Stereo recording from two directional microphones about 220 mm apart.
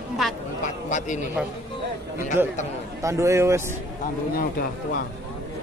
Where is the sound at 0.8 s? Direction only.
35° left (ahead or behind).